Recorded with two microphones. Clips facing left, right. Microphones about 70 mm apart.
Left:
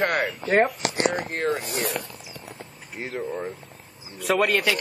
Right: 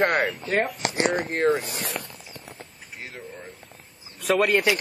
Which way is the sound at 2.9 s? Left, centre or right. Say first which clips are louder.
Left 8 dB; left.